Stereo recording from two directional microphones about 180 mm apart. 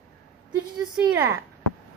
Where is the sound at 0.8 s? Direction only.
5° right (ahead or behind).